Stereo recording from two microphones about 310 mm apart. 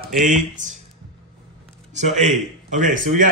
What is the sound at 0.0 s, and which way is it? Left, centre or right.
Speech, right.